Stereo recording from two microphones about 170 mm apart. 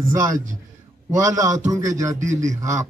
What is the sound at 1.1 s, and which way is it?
A man's voice, 20° right (ahead or behind).